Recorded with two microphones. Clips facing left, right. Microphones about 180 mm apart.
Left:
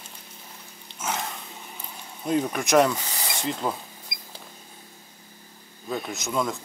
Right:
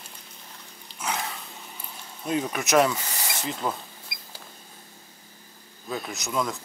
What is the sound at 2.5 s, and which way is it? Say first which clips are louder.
Speech: even; 5° right (ahead or behind).